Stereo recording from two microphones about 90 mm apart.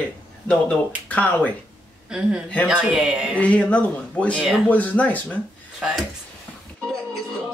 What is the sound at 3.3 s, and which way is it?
Speech, 15° left (ahead or behind).